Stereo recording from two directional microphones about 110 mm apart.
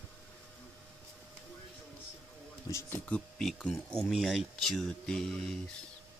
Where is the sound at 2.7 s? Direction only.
25° left (ahead or behind); by 5.5 s 5° left (ahead or behind).